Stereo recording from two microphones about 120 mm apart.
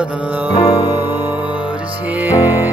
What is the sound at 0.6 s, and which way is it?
Music, 30° left (ahead or behind).